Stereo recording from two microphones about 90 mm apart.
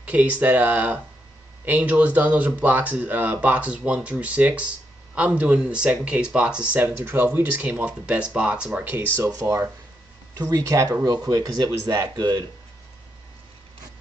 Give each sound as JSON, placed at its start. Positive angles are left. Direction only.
{"t": 0.0, "sound": "speech", "side_deg": -15}
{"t": 9.3, "sound": "speech", "side_deg": -35}